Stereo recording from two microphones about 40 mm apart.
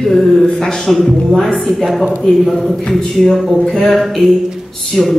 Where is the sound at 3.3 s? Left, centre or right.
Centre.